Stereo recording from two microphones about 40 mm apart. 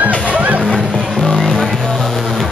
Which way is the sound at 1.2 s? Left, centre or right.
Left.